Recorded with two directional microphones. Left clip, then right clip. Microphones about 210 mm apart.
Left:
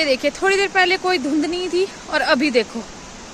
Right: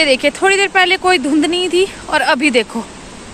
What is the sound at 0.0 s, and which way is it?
Speech, centre (ahead or behind).